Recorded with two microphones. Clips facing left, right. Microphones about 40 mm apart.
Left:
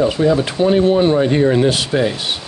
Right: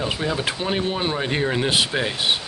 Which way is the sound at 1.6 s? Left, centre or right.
Centre.